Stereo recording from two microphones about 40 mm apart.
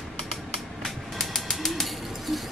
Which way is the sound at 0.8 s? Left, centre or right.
Centre.